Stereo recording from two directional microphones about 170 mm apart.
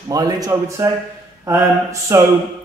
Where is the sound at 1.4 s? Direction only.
20° right (ahead or behind).